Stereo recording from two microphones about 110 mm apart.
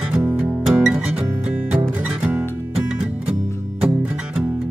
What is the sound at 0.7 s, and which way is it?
Music, 10° right (ahead or behind).